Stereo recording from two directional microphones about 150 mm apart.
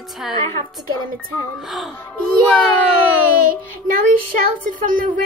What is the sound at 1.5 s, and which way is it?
Music, centre (ahead or behind).